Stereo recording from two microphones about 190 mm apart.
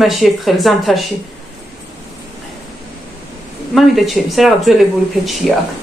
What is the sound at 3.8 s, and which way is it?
Speech, centre (ahead or behind).